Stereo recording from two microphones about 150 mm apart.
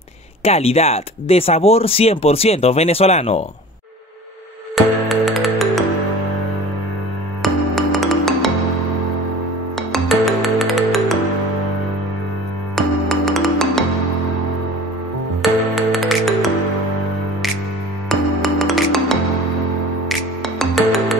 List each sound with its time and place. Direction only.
0.4 s speech: 40° left (ahead or behind)
4.7 s music: centre (ahead or behind)
7.4 s music: centre (ahead or behind)
9.8 s music: centre (ahead or behind)
12.7 s music: centre (ahead or behind)
15.7 s music: centre (ahead or behind)
18.0 s music: centre (ahead or behind)